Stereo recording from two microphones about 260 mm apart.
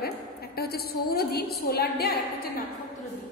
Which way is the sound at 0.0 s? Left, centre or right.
Left.